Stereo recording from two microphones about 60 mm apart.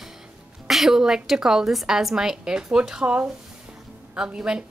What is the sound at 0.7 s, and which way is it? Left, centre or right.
A woman's voice, centre.